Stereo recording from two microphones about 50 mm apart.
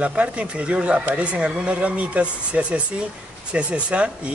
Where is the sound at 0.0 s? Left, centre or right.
Right.